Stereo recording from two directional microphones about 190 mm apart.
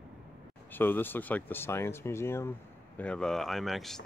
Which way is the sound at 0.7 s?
10° left (ahead or behind).